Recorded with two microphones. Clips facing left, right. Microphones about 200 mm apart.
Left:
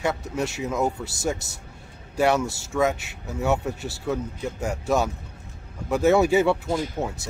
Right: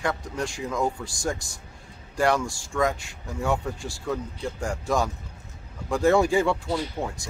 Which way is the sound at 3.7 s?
65° left (ahead or behind).